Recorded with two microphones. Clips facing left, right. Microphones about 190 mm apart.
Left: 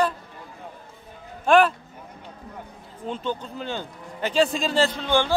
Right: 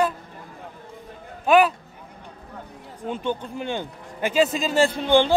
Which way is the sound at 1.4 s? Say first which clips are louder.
Even; 5° right (ahead or behind).